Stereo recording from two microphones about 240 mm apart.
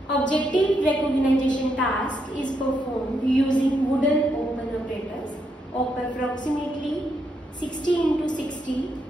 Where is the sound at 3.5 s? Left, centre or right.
Centre.